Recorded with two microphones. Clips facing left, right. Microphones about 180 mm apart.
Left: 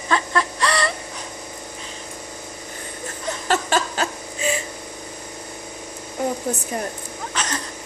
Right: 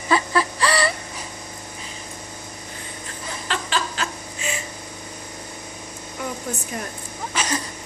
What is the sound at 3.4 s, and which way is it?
Laughter, 45° left (ahead or behind).